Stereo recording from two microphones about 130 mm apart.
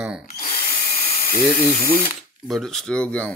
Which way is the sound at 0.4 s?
90° left.